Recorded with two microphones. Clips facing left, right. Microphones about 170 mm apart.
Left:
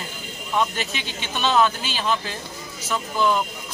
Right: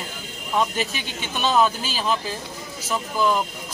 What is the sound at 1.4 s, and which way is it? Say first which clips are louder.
Speech: even; 5° right (ahead or behind).